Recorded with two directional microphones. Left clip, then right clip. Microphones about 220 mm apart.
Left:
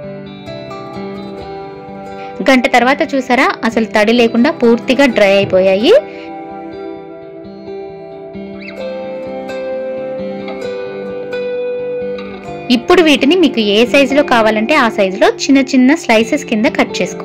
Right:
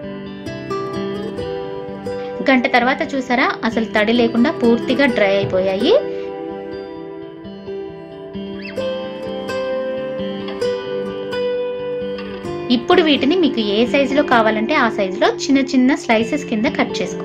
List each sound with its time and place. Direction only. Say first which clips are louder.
2.3 s a woman's voice: left 5 dB; 30° left (ahead or behind)
12.6 s a woman's voice: left 5 dB; 30° left (ahead or behind)